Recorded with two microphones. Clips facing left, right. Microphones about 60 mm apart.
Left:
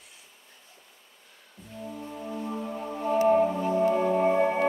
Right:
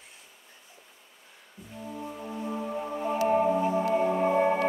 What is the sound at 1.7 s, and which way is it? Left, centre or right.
Music, centre.